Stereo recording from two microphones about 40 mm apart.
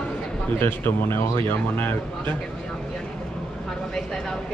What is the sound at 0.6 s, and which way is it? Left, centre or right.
Speech, left.